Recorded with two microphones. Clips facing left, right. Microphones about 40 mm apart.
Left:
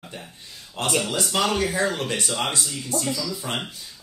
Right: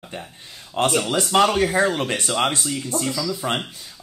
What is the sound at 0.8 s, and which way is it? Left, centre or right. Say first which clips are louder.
Speech: right 4 dB; right.